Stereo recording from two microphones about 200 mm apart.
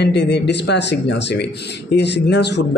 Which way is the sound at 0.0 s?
60° left (ahead or behind).